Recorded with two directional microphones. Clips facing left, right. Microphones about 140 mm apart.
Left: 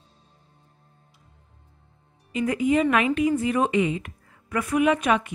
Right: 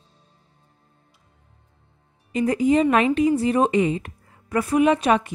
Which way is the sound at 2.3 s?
35° right (ahead or behind).